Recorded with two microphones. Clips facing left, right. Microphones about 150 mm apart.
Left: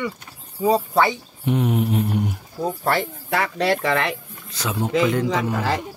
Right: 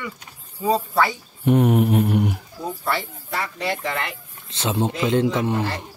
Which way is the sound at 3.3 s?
85° left.